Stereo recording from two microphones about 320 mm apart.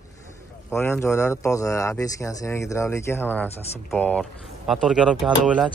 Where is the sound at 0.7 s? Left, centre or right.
Centre.